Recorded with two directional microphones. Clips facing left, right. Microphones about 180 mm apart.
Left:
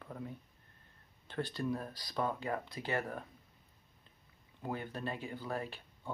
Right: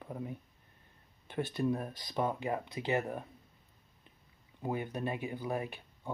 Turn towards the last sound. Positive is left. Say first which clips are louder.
# right 3 dB
turn(degrees=-20)  # may be behind; listen again after turning